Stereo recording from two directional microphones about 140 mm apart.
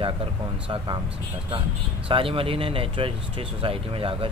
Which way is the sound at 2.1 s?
40° right (ahead or behind).